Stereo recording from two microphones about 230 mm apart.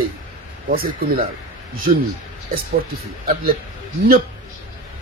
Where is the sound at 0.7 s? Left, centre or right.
Right.